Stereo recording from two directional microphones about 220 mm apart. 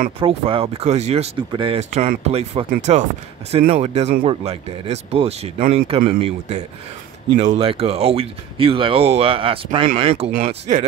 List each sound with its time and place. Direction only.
0.2 s speech: 25° right (ahead or behind)